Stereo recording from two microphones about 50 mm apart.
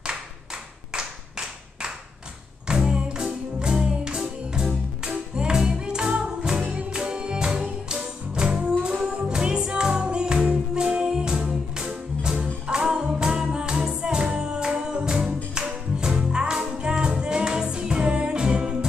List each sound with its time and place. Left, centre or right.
2.7 s music: centre